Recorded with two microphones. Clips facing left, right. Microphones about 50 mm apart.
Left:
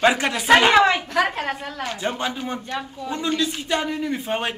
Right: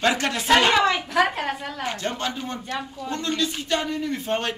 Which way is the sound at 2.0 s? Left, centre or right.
Centre.